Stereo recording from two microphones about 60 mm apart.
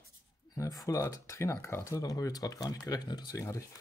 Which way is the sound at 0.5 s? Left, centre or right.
Left.